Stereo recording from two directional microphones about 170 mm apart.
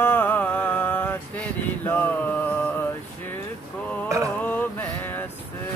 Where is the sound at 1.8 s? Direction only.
10° left (ahead or behind).